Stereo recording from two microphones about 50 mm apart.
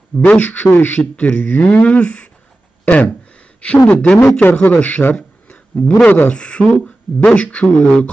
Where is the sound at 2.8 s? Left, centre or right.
Left.